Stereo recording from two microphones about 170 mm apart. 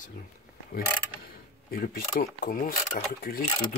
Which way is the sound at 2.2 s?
50° left (ahead or behind).